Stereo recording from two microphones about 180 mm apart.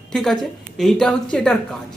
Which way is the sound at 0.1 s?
Centre (ahead or behind).